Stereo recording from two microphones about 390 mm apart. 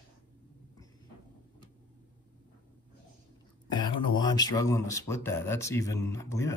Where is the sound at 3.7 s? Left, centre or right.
Centre.